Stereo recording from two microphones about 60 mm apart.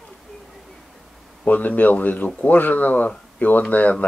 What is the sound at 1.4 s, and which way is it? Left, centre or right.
Speech, left.